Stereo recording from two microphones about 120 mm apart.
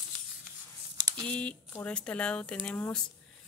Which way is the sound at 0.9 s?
35° right (ahead or behind).